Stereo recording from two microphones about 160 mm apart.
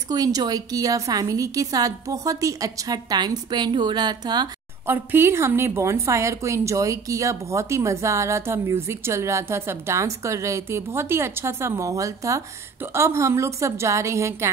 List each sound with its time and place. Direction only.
0.1 s a woman's voice: 25° right (ahead or behind)
4.8 s a woman's voice: 15° right (ahead or behind)